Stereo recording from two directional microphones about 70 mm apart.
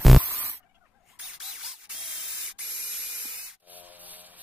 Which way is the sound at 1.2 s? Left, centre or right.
Centre.